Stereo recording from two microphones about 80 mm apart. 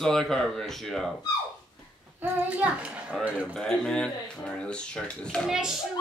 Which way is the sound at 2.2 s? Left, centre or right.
Right.